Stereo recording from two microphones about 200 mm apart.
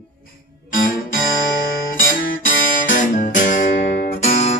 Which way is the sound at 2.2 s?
40° left (ahead or behind).